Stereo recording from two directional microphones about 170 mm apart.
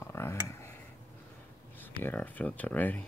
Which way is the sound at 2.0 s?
10° left (ahead or behind).